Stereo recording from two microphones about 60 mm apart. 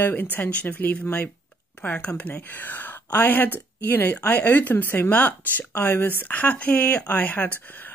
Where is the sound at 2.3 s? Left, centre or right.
Left.